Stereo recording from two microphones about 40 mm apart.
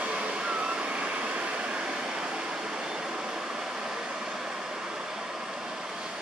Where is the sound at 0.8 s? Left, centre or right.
Right.